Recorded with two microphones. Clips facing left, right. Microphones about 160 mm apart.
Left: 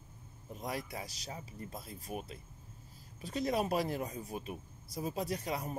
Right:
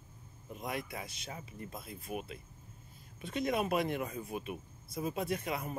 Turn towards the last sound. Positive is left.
turn(degrees=35)  # may be behind; listen again after turning